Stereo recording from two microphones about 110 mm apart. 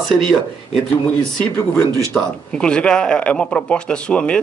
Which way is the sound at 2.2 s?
15° left (ahead or behind).